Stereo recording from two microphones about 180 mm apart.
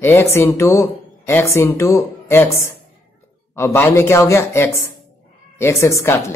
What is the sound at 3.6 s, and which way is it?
Speech, 15° left (ahead or behind).